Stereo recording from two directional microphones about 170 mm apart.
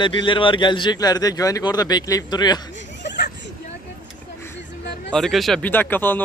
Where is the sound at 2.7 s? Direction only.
90° left.